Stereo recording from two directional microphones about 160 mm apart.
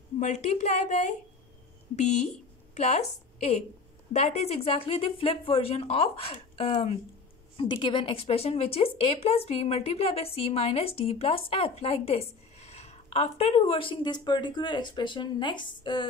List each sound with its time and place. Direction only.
0.2 s a woman's voice: 45° left (ahead or behind)
2.7 s speech: 40° left (ahead or behind)
4.1 s a woman's voice: 40° left (ahead or behind)